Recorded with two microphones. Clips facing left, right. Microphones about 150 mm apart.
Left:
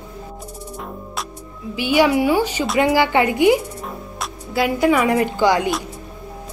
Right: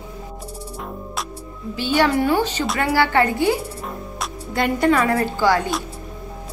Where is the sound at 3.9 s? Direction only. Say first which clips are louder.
Even; 5° left (ahead or behind).